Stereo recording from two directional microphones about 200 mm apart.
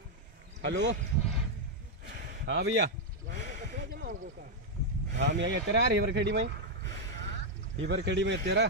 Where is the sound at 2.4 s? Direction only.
65° right (ahead or behind).